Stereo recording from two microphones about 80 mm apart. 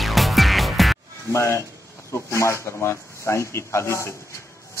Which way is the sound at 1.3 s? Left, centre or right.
Left.